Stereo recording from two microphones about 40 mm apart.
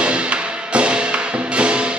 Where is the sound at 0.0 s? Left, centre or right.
Right.